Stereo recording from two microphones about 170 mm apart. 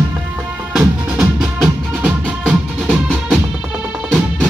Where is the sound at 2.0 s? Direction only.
5° right (ahead or behind).